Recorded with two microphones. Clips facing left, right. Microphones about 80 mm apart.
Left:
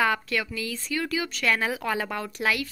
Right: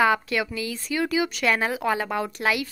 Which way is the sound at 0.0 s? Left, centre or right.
Centre.